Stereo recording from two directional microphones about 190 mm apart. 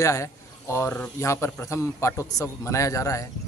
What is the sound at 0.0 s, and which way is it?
Speech, 15° left (ahead or behind).